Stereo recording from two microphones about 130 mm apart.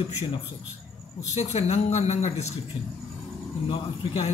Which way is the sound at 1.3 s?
55° left (ahead or behind).